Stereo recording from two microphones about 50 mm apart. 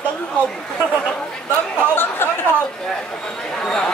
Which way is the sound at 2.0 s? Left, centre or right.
Left.